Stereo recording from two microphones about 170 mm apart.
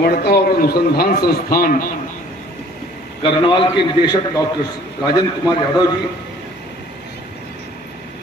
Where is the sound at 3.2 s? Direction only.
30° left (ahead or behind).